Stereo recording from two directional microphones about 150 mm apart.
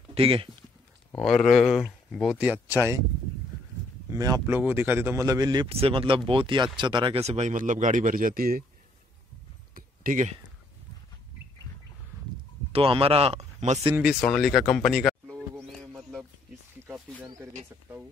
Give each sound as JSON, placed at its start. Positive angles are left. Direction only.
{"t": 0.1, "sound": "speech", "side_deg": -40}
{"t": 1.1, "sound": "speech", "side_deg": 0}
{"t": 4.1, "sound": "speech", "side_deg": -25}
{"t": 5.7, "sound": "speech", "side_deg": -40}
{"t": 9.8, "sound": "a sound", "side_deg": -60}
{"t": 12.7, "sound": "speech", "side_deg": -40}
{"t": 14.2, "sound": "speech", "side_deg": 0}